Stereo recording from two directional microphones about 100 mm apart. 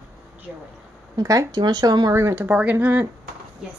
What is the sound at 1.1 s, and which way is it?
Speech, 35° right (ahead or behind).